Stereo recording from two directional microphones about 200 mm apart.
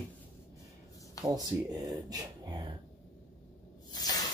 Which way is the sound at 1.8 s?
15° right (ahead or behind).